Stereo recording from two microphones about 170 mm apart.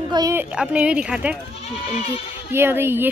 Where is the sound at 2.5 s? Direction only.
15° right (ahead or behind).